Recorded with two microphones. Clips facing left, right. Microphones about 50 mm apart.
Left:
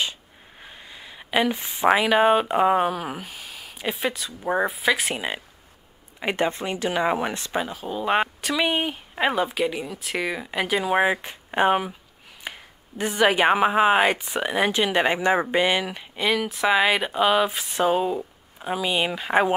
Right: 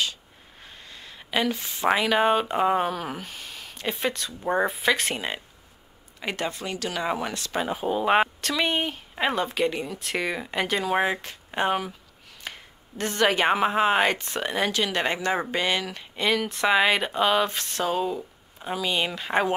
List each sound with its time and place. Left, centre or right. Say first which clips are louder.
0.6 s speech: left 2 dB; centre
6.1 s speech: left 6 dB; left
7.6 s speech: right 3 dB; centre
8.4 s speech: left 2 dB; centre